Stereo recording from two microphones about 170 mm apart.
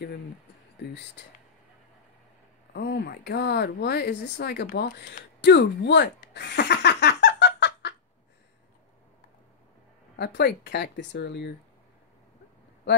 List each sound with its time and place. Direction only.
1.2 s speech: 90° left
2.7 s speech: 75° left (ahead or behind)
6.3 s a sound: 85° left
10.1 s speech: 75° left (ahead or behind)